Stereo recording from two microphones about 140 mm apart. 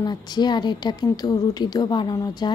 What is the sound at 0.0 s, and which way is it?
Speech, 30° left (ahead or behind).